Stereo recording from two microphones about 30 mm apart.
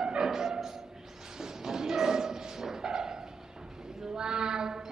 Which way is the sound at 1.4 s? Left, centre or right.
Centre.